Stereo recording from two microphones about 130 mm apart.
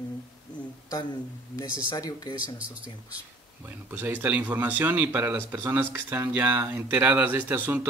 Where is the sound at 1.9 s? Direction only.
30° left (ahead or behind).